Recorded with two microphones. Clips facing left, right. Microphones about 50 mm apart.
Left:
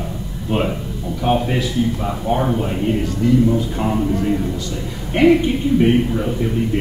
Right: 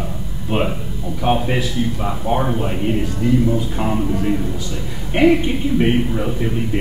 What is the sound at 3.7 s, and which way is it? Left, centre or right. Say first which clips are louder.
A man's voice: left 1 dB; centre.